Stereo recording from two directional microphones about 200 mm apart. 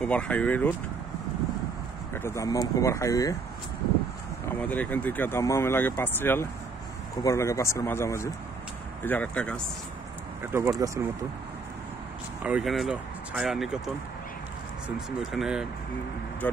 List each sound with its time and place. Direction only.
0.0 s speech: 5° left (ahead or behind)
2.1 s speech: 15° left (ahead or behind)
4.6 s speech: 5° left (ahead or behind)
10.4 s speech: 10° right (ahead or behind)
12.4 s speech: 5° right (ahead or behind)
15.0 s speech: 5° right (ahead or behind)